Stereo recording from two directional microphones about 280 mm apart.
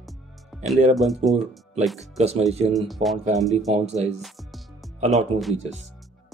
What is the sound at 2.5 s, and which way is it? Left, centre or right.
Speech, right.